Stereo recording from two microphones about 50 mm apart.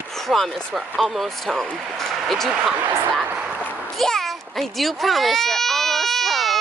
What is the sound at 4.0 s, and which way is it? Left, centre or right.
Baby cry, centre.